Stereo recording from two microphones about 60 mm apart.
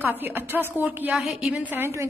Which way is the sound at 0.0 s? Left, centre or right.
Right.